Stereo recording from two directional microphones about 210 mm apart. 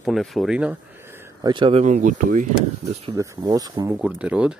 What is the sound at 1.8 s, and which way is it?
Speech, 35° right (ahead or behind).